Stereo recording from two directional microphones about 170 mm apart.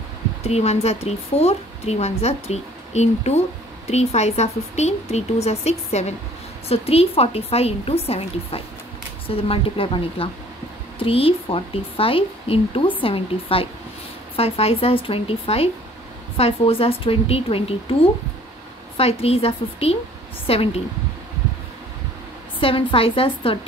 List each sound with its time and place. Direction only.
0.4 s speech: 40° left (ahead or behind)
22.6 s speech: 30° left (ahead or behind)